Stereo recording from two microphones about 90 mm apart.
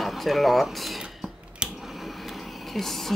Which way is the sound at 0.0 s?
Centre (ahead or behind).